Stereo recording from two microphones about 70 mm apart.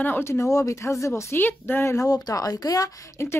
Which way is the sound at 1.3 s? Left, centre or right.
Left.